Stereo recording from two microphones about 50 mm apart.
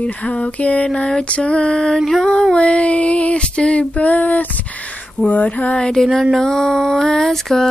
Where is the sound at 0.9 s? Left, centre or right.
Left.